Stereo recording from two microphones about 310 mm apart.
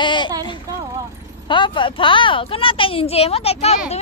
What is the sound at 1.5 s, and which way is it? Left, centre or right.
Speech, centre.